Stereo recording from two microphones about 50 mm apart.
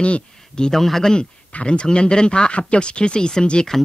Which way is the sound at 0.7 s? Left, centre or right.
Centre.